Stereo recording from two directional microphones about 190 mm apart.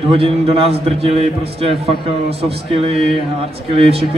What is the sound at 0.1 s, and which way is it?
A man's voice, 30° right (ahead or behind).